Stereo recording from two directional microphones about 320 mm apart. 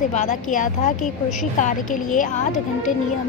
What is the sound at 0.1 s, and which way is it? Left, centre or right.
Speech, left.